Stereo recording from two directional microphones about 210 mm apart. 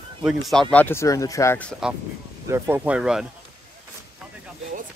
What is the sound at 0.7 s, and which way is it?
Speech, 10° left (ahead or behind).